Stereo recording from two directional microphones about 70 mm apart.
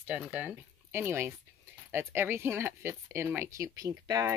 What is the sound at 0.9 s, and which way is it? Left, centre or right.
Speech, right.